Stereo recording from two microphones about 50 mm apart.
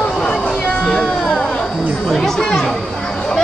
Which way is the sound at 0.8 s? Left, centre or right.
Centre.